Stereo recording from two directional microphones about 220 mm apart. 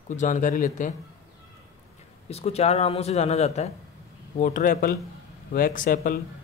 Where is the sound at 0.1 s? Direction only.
35° left (ahead or behind).